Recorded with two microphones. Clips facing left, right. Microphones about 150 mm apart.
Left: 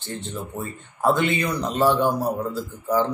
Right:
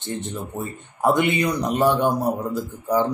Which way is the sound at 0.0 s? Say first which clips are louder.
Right 3 dB; 20° right (ahead or behind).